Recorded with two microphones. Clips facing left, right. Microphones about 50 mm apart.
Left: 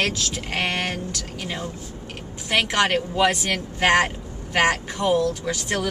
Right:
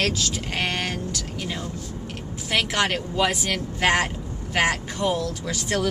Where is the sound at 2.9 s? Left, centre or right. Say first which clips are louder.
Left 3 dB; centre.